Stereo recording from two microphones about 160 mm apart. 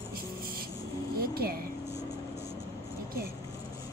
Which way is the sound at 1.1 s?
70° right (ahead or behind).